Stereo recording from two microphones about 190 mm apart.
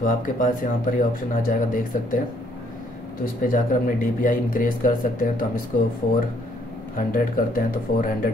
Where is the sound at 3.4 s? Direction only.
45° left (ahead or behind).